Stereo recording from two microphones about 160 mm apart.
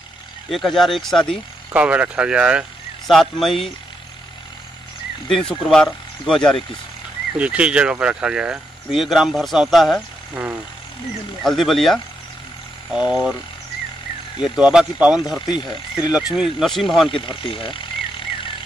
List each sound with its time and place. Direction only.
0.5 s speech: centre (ahead or behind)
1.7 s speech: 10° right (ahead or behind)
5.3 s speech: centre (ahead or behind)
7.3 s speech: 5° right (ahead or behind)
10.3 s speech: 10° right (ahead or behind)
11.4 s speech: centre (ahead or behind)
14.4 s speech: 5° right (ahead or behind)
17.1 s vehicle: 35° left (ahead or behind)